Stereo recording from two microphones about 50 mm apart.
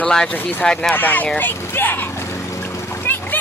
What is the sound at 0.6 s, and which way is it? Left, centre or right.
Speech, centre.